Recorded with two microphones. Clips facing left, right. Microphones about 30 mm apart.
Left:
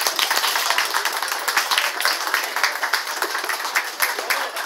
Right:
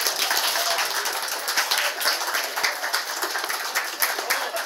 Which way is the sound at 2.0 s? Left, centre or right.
Left.